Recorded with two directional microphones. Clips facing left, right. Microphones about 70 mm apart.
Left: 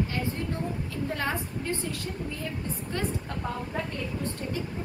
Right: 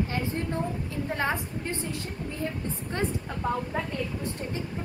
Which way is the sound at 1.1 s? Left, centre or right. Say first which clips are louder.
Right 4 dB; right.